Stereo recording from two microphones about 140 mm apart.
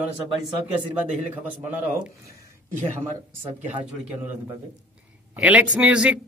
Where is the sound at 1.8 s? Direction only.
70° right (ahead or behind).